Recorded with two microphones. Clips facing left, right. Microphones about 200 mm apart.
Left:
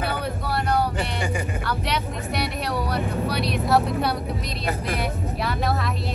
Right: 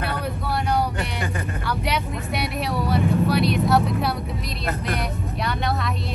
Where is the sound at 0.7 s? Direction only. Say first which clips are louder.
Even; centre (ahead or behind).